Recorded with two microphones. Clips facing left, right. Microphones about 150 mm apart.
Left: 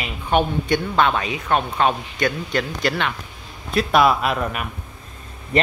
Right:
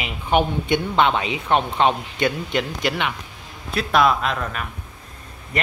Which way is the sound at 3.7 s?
5° left (ahead or behind).